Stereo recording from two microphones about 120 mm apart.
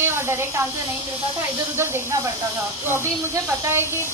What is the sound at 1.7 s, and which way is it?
Speech, 20° right (ahead or behind).